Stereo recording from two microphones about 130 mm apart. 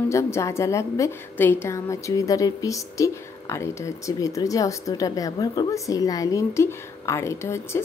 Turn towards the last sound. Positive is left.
turn(degrees=20)  # may be behind; listen again after turning